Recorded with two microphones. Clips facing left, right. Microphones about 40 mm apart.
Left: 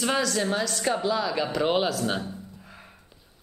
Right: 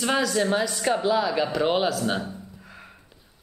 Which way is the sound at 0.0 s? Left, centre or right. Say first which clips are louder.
Right 2 dB; centre.